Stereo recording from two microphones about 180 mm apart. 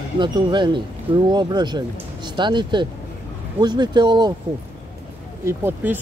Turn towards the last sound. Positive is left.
turn(degrees=-15)  # may be behind; listen again after turning